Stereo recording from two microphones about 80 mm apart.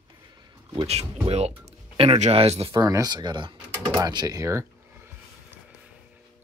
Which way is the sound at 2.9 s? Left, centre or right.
Right.